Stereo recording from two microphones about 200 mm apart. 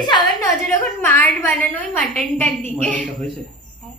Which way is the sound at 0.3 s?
10° left (ahead or behind).